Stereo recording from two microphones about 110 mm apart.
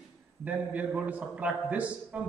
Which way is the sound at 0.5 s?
15° right (ahead or behind).